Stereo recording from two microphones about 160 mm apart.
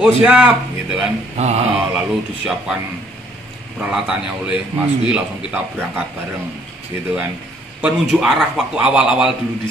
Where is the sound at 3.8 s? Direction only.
5° right (ahead or behind).